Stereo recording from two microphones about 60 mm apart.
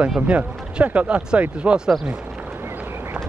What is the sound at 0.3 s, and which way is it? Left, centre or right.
Speech, right.